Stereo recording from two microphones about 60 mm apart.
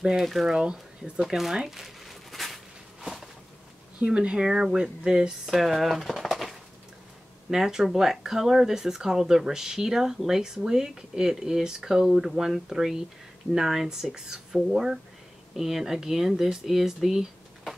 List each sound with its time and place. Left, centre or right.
0.0 s speech: centre
0.5 s speech: centre
1.2 s a sound: centre
4.0 s speech: centre